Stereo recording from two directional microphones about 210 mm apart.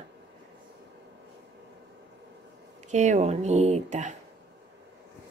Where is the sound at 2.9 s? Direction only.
35° right (ahead or behind).